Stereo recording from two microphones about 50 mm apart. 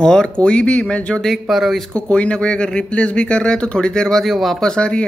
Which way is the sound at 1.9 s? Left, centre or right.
Left.